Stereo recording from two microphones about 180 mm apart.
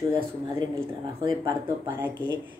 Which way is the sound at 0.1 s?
25° right (ahead or behind).